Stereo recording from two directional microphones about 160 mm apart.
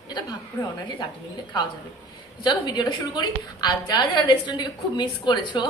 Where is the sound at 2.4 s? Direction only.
25° left (ahead or behind).